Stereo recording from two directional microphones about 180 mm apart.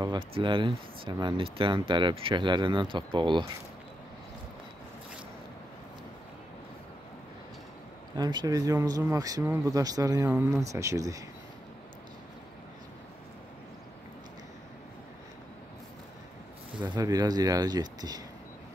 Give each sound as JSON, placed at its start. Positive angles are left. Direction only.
{"t": 0.0, "sound": "speech", "side_deg": -25}
{"t": 8.2, "sound": "speech", "side_deg": -25}
{"t": 16.9, "sound": "speech", "side_deg": -20}